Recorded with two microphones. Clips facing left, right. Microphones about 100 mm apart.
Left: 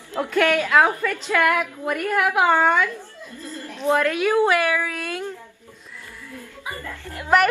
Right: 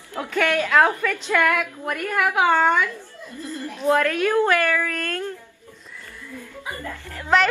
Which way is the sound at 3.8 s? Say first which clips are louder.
Even; 5° left (ahead or behind).